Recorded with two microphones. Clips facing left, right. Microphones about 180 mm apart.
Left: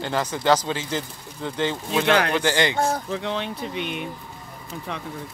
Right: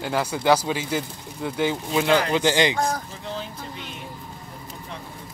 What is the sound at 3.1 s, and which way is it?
Speech, 75° left (ahead or behind).